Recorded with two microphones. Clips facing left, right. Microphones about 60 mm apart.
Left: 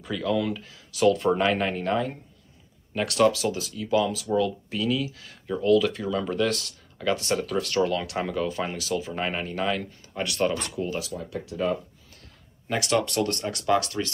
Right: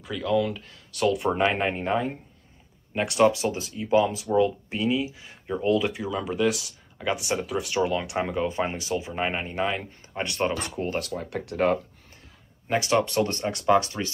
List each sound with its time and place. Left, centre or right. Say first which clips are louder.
0.0 s speech: right 1 dB; centre
1.1 s speech: left 1 dB; centre
5.9 s speech: left 1 dB; centre; by 10.5 s right
10.7 s speech: right 1 dB; right
12.6 s speech: right 2 dB; centre